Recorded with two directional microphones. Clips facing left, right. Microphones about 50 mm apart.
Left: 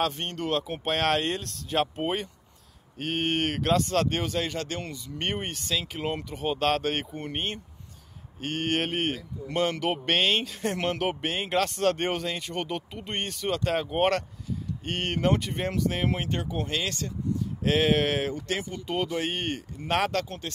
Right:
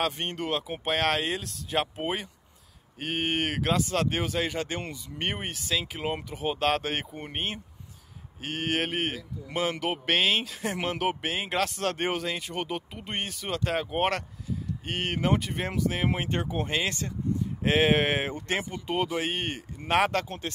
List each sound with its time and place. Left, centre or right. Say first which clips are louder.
0.0 s a man's voice: left 1 dB; centre
16.1 s speech: even; centre
20.2 s speech: right 1 dB; centre